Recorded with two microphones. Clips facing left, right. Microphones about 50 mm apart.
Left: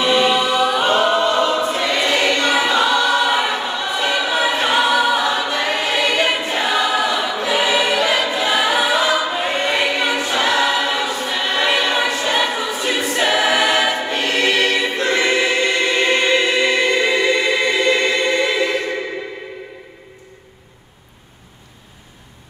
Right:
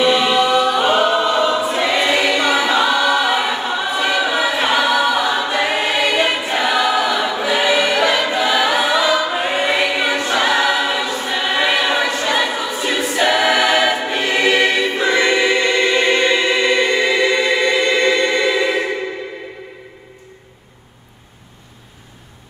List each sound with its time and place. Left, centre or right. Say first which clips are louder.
0.0 s choir: right 1 dB; centre
8.9 s choir: right 1 dB; centre
9.3 s choir: right 2 dB; centre
15.0 s choir: right 2 dB; centre
16.3 s music: right 1 dB; centre
18.3 s choir: right 1 dB; centre